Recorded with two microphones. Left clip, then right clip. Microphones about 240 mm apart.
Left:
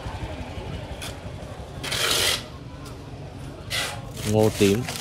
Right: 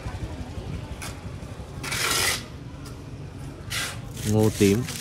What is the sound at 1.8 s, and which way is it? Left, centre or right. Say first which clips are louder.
Rub: left 2 dB; centre.